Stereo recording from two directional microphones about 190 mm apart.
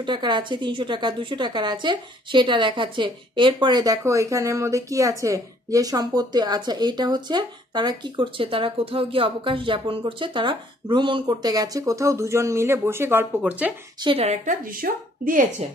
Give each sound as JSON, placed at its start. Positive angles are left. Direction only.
{"t": 0.0, "sound": "a woman's voice", "side_deg": -25}
{"t": 14.0, "sound": "speech", "side_deg": -30}